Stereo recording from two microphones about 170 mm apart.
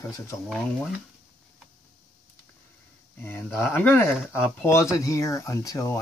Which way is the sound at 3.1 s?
15° left (ahead or behind).